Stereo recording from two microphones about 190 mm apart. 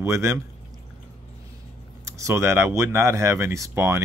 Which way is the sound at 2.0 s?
15° right (ahead or behind).